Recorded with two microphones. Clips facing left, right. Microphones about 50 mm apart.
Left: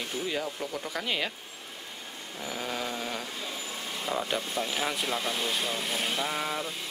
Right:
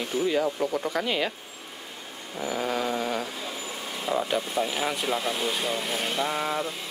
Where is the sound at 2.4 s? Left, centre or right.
Centre.